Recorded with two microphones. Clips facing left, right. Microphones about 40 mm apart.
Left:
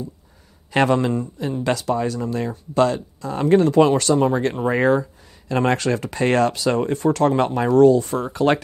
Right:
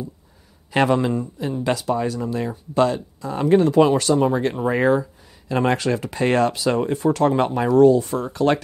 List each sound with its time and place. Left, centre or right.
0.7 s a man's voice: centre
4.1 s a man's voice: centre
8.3 s speech: centre